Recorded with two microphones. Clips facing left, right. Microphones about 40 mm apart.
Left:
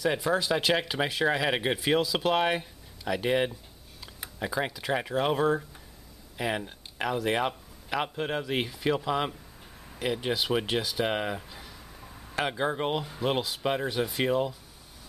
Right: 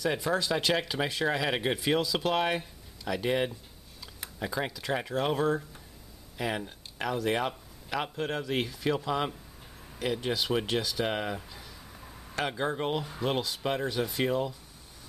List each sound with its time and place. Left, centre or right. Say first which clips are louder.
0.0 s speech: left 2 dB; centre